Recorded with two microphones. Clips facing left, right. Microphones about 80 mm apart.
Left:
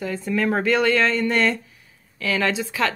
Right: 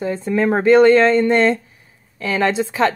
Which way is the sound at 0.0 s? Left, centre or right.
Right.